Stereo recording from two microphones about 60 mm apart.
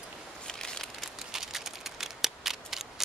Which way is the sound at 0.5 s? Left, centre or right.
Centre.